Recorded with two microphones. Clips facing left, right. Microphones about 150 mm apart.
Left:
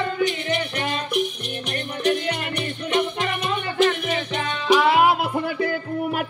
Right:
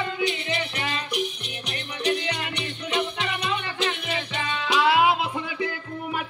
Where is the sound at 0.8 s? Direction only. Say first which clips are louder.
Left 4 dB; 50° left (ahead or behind).